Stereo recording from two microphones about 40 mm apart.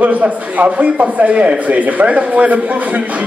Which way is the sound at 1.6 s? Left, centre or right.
Right.